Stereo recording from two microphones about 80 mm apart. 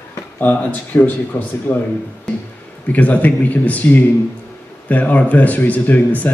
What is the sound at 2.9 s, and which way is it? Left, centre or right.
Speech, centre.